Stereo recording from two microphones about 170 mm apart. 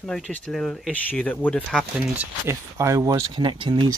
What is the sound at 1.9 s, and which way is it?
Speech, 5° right (ahead or behind).